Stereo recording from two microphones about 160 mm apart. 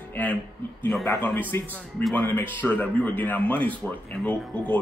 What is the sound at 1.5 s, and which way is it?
A man's voice, 15° left (ahead or behind).